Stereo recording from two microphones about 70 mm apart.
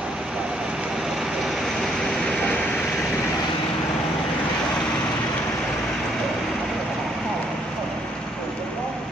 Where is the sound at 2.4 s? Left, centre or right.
Centre.